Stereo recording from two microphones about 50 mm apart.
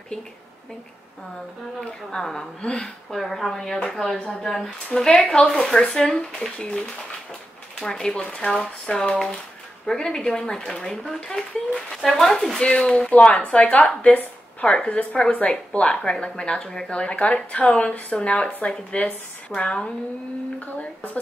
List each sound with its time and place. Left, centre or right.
1.8 s a woman's voice: centre
7.8 s a woman's voice: centre
8.2 s a woman's voice: left
12.6 s a woman's voice: left
16.9 s a woman's voice: left